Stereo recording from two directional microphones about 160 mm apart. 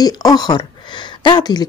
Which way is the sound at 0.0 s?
25° left (ahead or behind).